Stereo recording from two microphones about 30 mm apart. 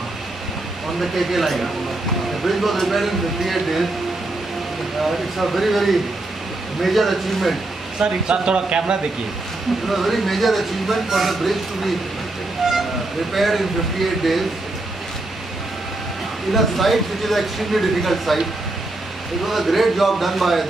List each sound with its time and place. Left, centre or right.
0.9 s speech: centre
5.0 s speech: centre
8.0 s speech: right
9.8 s speech: centre
13.3 s speech: centre
16.5 s speech: centre
19.4 s speech: centre